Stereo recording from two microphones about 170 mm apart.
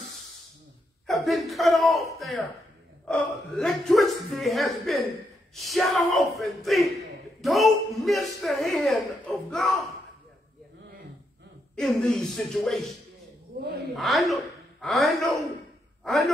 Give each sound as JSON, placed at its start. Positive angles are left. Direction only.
{"t": 1.0, "sound": "a man's voice", "side_deg": 0}
{"t": 11.7, "sound": "a man's voice", "side_deg": 0}
{"t": 13.6, "sound": "a woman's voice", "side_deg": -70}
{"t": 13.9, "sound": "a man's voice", "side_deg": 0}